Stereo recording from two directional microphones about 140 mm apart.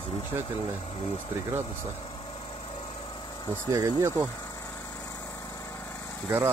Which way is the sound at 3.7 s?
20° right (ahead or behind).